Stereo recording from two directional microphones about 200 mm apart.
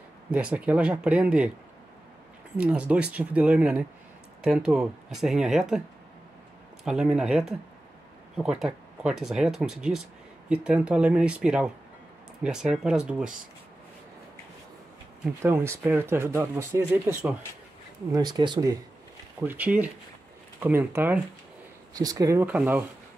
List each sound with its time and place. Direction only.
0.3 s speech: 5° right (ahead or behind)
2.5 s speech: 5° right (ahead or behind)
6.8 s speech: 5° right (ahead or behind)
15.4 s speech: 15° right (ahead or behind)
18.1 s speech: 20° right (ahead or behind)
19.4 s speech: 10° right (ahead or behind)